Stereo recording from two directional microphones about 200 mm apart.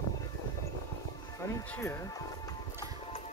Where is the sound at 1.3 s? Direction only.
15° left (ahead or behind).